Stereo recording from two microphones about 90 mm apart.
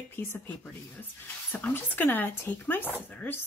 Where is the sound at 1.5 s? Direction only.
20° left (ahead or behind).